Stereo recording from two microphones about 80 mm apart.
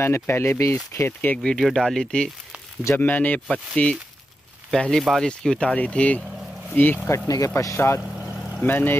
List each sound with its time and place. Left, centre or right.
0.0 s speech: left
0.9 s speech: left
1.4 s speech: centre
3.0 s speech: left
7.2 s speech: left
7.5 s speech: left
8.0 s vehicle: centre
8.6 s speech: left